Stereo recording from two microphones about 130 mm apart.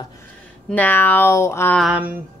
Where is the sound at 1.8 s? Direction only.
10° right (ahead or behind).